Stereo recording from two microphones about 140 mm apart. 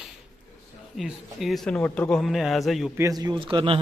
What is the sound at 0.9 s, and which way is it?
Speech, centre (ahead or behind).